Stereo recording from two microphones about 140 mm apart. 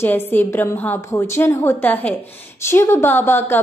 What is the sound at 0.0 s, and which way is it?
A woman's voice, 15° left (ahead or behind).